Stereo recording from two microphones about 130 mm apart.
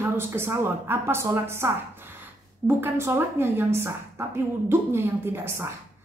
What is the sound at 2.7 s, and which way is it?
A woman's voice, 20° right (ahead or behind).